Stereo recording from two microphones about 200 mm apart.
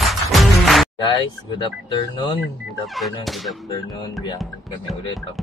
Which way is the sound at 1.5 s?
25° left (ahead or behind).